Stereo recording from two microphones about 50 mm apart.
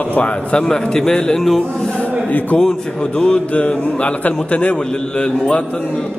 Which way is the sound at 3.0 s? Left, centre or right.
Centre.